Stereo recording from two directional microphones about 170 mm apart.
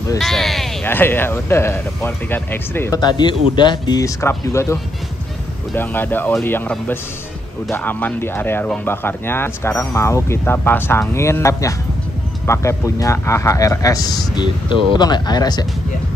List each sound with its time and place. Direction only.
0.2 s a sound: centre (ahead or behind)
0.8 s speech: 10° left (ahead or behind)
5.8 s speech: 10° left (ahead or behind)